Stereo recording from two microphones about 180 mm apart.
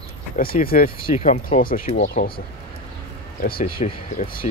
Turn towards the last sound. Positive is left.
turn(degrees=50)  # may be behind; listen again after turning